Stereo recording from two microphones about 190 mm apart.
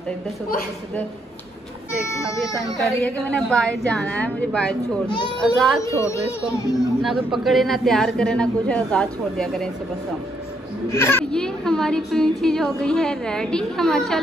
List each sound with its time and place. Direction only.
2.9 s a woman's voice: 5° left (ahead or behind)
5.8 s speech: 15° left (ahead or behind)
7.0 s a woman's voice: centre (ahead or behind)
10.9 s a woman's voice: 15° left (ahead or behind)